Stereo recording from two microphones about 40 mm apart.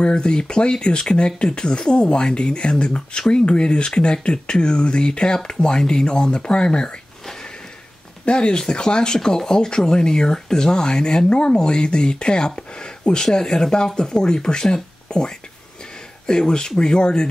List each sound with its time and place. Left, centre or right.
0.0 s speech: left
8.3 s speech: left